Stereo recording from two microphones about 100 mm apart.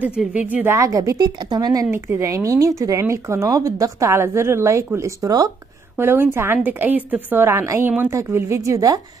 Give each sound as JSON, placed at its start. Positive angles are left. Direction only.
{"t": 0.3, "sound": "a woman's voice", "side_deg": -15}
{"t": 0.7, "sound": "a woman's voice", "side_deg": -35}
{"t": 5.9, "sound": "a woman's voice", "side_deg": -25}